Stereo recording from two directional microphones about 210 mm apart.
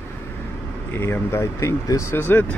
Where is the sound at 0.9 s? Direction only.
10° left (ahead or behind).